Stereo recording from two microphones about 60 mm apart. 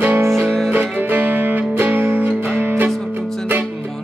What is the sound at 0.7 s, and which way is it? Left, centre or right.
Music, right.